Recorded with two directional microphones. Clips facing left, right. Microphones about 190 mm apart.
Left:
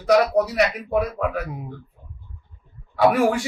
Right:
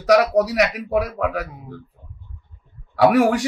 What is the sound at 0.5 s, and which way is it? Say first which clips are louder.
Speech: right 1 dB; 85° right.